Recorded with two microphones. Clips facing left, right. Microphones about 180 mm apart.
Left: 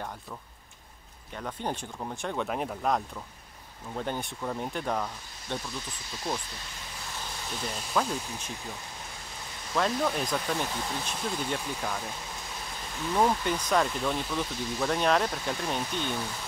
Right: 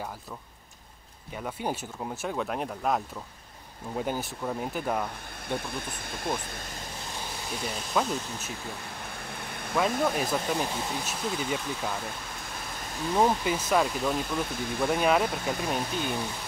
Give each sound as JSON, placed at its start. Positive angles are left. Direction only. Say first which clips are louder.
{"t": 1.3, "sound": "speech", "louder": "right 2 dB", "side_deg": -10}
{"t": 5.5, "sound": "speech", "louder": "right 3 dB", "side_deg": -55}
{"t": 7.6, "sound": "speech", "louder": "right 1 dB", "side_deg": -5}
{"t": 9.1, "sound": "a sound", "louder": "right 5 dB", "side_deg": -60}
{"t": 9.8, "sound": "speech", "louder": "right 2 dB", "side_deg": -5}
{"t": 13.1, "sound": "speech", "louder": "right 1 dB", "side_deg": -5}
{"t": 14.6, "sound": "speech", "louder": "right 3 dB", "side_deg": -55}
{"t": 14.9, "sound": "speech", "louder": "right 2 dB", "side_deg": -5}